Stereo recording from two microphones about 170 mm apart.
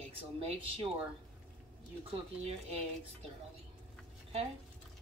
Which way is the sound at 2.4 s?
35° right (ahead or behind).